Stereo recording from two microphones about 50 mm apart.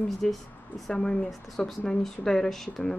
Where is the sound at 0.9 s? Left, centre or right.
Centre.